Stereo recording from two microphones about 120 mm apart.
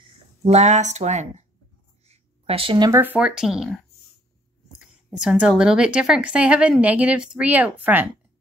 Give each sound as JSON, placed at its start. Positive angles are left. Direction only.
{"t": 0.5, "sound": "speech", "side_deg": -70}
{"t": 2.0, "sound": "a sound", "side_deg": -50}
{"t": 2.9, "sound": "a woman's voice", "side_deg": -15}
{"t": 4.7, "sound": "a woman's voice", "side_deg": -5}